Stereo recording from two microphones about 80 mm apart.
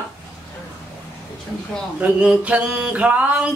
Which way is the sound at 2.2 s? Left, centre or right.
Centre.